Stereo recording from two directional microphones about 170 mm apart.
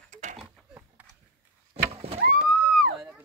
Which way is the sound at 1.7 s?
35° right (ahead or behind).